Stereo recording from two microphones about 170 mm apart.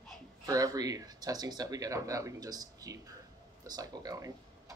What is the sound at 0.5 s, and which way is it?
Speech, 20° right (ahead or behind).